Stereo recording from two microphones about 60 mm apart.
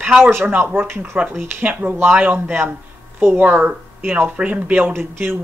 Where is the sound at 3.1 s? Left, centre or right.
Right.